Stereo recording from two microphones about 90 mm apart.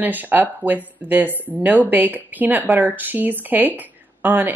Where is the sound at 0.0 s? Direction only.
20° right (ahead or behind).